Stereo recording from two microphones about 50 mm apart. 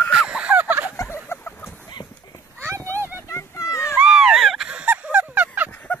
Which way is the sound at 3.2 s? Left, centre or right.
Left.